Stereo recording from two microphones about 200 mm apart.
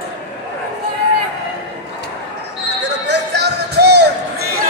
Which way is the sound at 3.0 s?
55° right (ahead or behind).